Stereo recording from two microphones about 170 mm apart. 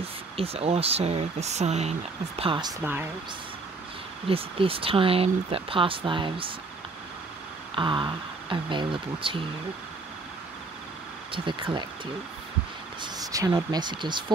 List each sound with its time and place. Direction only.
0.0 s speech: 35° right (ahead or behind)
2.8 s speech: 10° right (ahead or behind)
4.3 s speech: 35° right (ahead or behind)
7.7 s speech: 30° right (ahead or behind)
11.3 s speech: 30° right (ahead or behind)
13.0 s speech: 20° right (ahead or behind)